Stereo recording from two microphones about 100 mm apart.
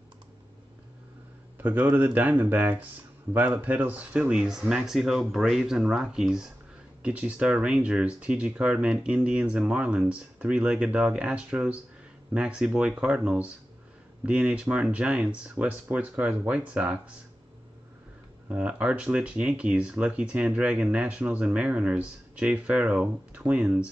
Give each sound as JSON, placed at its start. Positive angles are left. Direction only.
{"t": 1.6, "sound": "speech", "side_deg": -20}
{"t": 18.5, "sound": "speech", "side_deg": -10}